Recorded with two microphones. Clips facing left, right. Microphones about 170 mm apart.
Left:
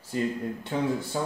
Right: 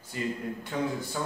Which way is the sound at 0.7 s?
30° left (ahead or behind).